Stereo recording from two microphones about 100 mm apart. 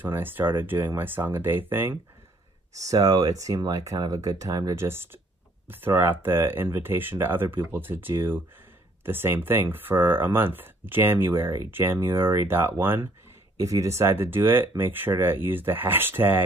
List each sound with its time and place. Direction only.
0.0 s speech: 20° right (ahead or behind)
2.8 s speech: 35° right (ahead or behind)
4.8 s speech: 25° right (ahead or behind)